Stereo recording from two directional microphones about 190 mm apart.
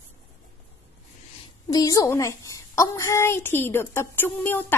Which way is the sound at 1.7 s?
20° left (ahead or behind).